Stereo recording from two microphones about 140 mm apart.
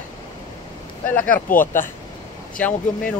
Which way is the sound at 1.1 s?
10° left (ahead or behind).